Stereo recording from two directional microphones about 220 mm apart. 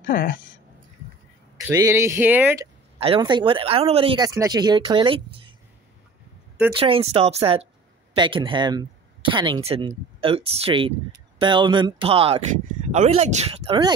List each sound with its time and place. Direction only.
0.0 s speech: 40° left (ahead or behind)
1.7 s speech: 15° right (ahead or behind)
3.0 s speech: 25° right (ahead or behind)
6.7 s speech: 25° right (ahead or behind)